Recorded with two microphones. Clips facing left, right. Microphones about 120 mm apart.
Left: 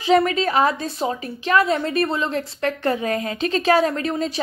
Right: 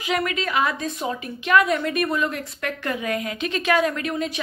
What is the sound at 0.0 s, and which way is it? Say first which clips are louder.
A woman's voice: left 7 dB; 30° left (ahead or behind).